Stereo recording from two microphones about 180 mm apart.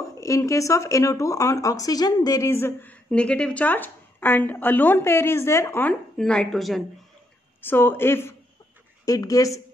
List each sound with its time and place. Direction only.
0.2 s speech: 15° left (ahead or behind); by 6.8 s centre (ahead or behind)
7.6 s a woman's voice: 10° left (ahead or behind)